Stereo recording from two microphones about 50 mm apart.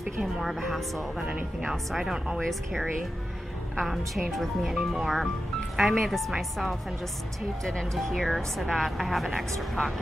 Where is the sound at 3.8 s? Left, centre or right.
Centre.